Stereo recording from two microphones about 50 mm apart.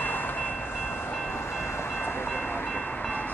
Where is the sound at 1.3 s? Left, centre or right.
Left.